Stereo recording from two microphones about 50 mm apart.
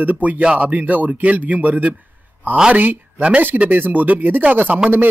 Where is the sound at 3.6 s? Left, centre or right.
Right.